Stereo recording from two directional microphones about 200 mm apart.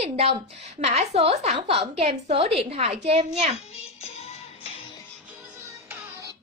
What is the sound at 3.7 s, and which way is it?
Music, 30° left (ahead or behind).